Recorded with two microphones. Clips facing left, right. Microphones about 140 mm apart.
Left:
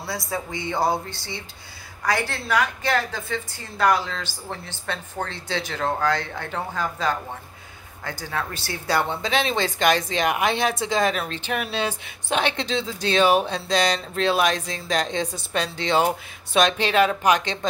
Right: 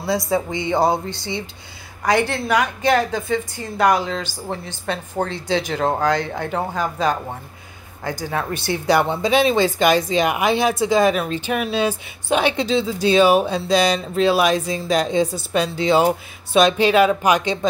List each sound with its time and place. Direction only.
0.0 s speech: 20° right (ahead or behind)